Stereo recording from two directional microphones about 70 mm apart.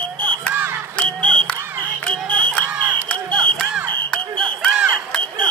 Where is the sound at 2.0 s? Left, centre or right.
Centre.